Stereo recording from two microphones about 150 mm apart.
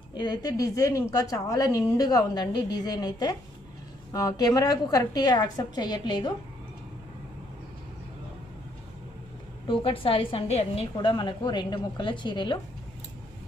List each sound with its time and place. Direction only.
0.2 s a woman's voice: 25° left (ahead or behind)
9.7 s a woman's voice: 35° left (ahead or behind)